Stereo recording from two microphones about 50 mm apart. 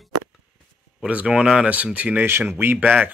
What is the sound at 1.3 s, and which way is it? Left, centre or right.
Speech, centre.